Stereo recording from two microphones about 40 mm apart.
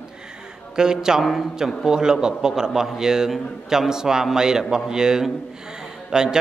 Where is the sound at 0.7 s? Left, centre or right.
Centre.